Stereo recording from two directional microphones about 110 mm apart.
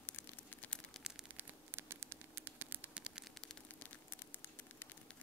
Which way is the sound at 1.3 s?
20° right (ahead or behind).